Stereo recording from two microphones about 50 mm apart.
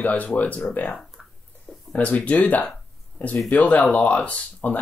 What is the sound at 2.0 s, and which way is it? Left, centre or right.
Speech, left.